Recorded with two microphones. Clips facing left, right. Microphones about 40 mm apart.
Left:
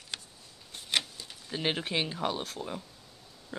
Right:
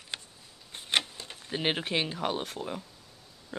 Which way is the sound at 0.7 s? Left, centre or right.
Right.